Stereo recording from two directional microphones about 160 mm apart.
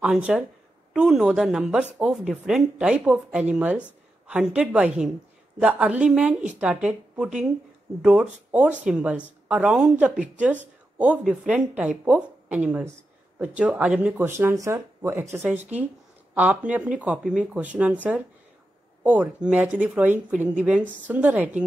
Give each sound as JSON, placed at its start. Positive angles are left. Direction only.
{"t": 0.0, "sound": "a woman's voice", "side_deg": -5}